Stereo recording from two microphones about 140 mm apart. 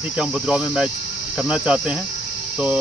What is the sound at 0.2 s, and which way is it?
Cricket, 5° right (ahead or behind).